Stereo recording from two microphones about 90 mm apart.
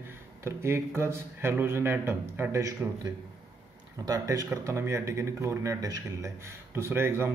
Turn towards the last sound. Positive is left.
turn(degrees=-25)  # may be behind; listen again after turning